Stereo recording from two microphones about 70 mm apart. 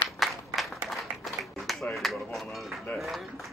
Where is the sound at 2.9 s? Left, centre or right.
Left.